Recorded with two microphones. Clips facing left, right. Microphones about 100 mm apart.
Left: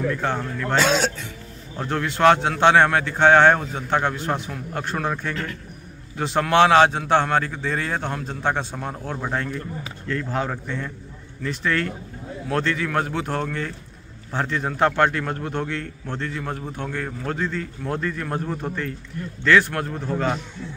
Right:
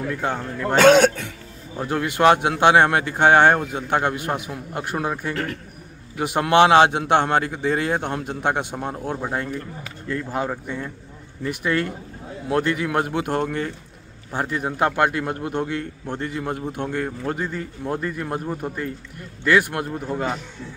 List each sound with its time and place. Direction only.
0.2 s a man's voice: 10° right (ahead or behind)
0.7 s a man's voice: 55° right (ahead or behind)
1.8 s a man's voice: 10° right (ahead or behind)
5.3 s a man's voice: 45° right (ahead or behind)
6.1 s a man's voice: 15° right (ahead or behind)